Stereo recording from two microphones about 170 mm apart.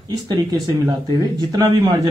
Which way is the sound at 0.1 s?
25° right (ahead or behind).